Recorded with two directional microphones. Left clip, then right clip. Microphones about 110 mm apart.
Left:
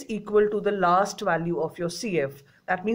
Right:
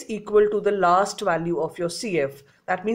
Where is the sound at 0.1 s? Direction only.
35° right (ahead or behind).